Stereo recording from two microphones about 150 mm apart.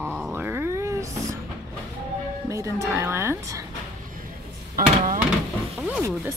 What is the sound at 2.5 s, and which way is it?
A woman's voice, 20° right (ahead or behind).